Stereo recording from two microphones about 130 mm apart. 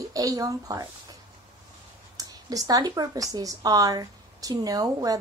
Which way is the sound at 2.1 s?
25° right (ahead or behind).